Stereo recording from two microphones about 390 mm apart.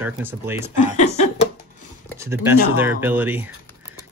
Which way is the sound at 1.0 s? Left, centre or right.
Centre.